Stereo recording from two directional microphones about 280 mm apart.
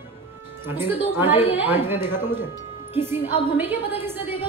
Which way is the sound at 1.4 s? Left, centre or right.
Left.